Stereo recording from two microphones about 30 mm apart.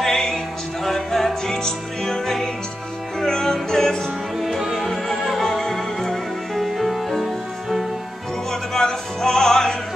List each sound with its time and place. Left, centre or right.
0.0 s music: centre
1.5 s music: centre
4.4 s music: centre
4.7 s music: centre
6.5 s music: centre
8.5 s music: centre